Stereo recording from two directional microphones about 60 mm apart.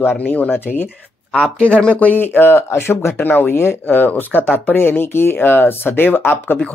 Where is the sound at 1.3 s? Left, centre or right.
Centre; by 6.6 s left.